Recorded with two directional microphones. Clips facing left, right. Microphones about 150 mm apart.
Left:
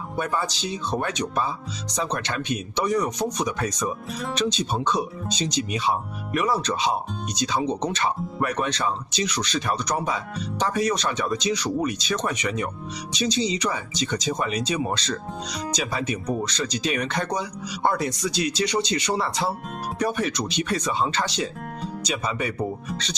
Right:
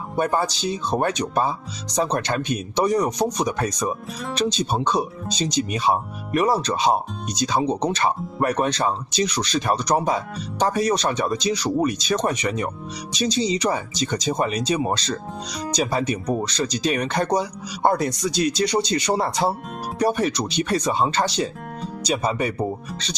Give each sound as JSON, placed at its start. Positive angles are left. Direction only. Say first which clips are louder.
{"t": 0.2, "sound": "speech", "louder": "right 5 dB", "side_deg": -40}
{"t": 4.1, "sound": "speech", "louder": "even", "side_deg": 0}
{"t": 4.4, "sound": "speech", "louder": "right 3 dB", "side_deg": -40}